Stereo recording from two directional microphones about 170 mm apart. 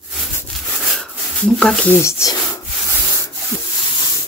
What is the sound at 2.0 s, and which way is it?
Speech, 20° left (ahead or behind).